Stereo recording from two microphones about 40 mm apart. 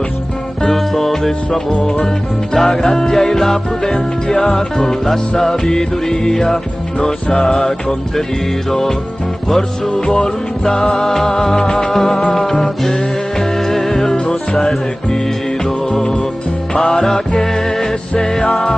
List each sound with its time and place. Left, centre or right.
0.7 s music: centre
1.7 s music: left
2.5 s music: centre
10.0 s music: centre
14.1 s music: left
15.9 s music: centre